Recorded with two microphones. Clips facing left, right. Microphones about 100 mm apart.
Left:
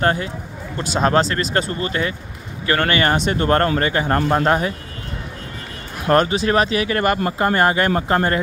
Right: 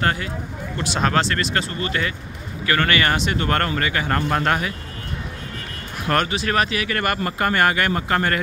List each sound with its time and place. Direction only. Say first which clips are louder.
0.0 s speech: left 3 dB; 30° left (ahead or behind)
6.0 s speech: left 5 dB; 30° left (ahead or behind)